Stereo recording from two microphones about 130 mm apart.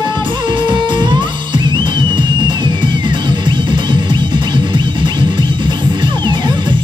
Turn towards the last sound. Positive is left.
turn(degrees=-35)  # may be behind; listen again after turning